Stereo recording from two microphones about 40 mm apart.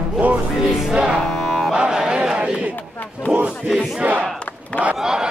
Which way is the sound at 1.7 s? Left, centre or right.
Centre.